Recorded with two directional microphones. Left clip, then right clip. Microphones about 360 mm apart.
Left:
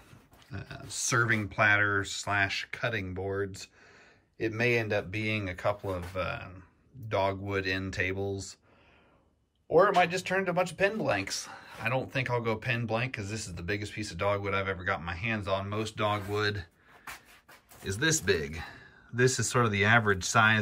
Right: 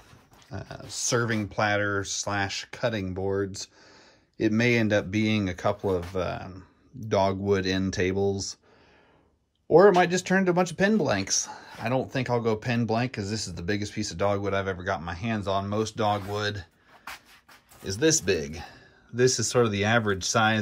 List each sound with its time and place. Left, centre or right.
0.5 s speech: centre
9.8 s speech: centre
17.7 s a man's voice: centre